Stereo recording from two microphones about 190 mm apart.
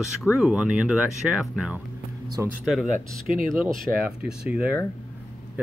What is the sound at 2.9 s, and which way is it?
Speech, 45° right (ahead or behind).